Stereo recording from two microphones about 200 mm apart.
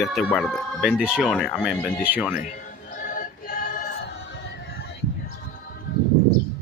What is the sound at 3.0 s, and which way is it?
Music, 45° left (ahead or behind).